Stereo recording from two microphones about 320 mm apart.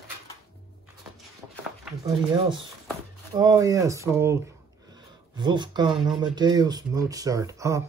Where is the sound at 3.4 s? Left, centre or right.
Centre.